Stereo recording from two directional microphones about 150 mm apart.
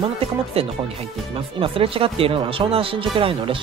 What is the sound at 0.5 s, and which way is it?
Speech, 40° right (ahead or behind).